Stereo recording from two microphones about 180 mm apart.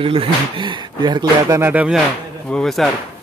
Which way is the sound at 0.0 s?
30° right (ahead or behind).